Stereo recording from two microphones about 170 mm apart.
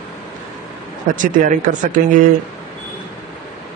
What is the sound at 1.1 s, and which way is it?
Speech, 50° right (ahead or behind).